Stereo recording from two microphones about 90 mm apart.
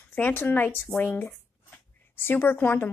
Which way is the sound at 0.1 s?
20° left (ahead or behind).